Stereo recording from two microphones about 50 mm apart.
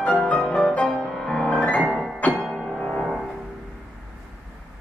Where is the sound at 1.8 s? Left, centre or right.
Centre.